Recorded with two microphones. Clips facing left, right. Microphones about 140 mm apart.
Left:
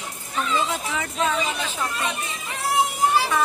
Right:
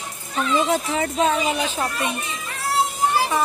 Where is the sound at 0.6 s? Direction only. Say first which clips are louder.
Right 6 dB; 35° right (ahead or behind).